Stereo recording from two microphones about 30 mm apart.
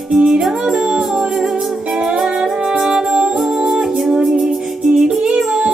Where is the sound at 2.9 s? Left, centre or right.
Right.